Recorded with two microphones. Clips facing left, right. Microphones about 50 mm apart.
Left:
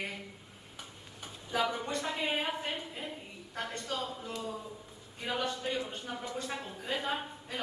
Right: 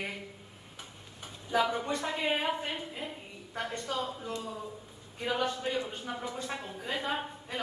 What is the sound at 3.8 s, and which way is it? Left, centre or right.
Speech, right.